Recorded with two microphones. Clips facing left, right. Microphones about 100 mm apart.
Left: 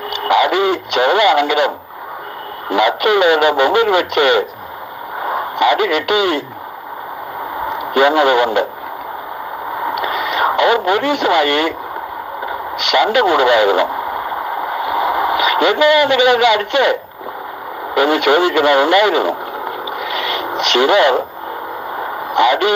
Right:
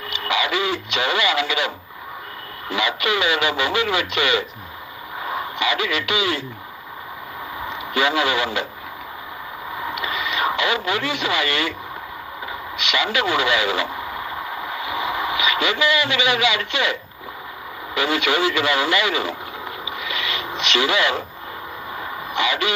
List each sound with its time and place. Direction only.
0.2 s speech: 55° left (ahead or behind)
2.7 s speech: 50° left (ahead or behind)
7.5 s speech: 55° left (ahead or behind)
9.8 s radio: 50° left (ahead or behind)
17.9 s speech: 50° left (ahead or behind)
21.9 s a sound: 45° left (ahead or behind)